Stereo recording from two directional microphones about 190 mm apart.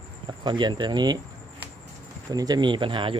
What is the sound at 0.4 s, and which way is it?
Speech, 25° right (ahead or behind).